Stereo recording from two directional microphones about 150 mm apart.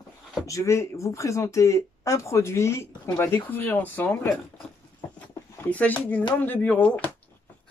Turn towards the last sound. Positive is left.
turn(degrees=10)  # may be behind; listen again after turning